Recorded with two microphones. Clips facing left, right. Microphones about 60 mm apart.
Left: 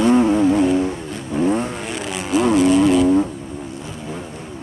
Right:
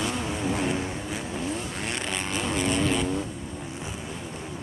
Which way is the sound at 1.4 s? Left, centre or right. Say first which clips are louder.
Left 16 dB; left.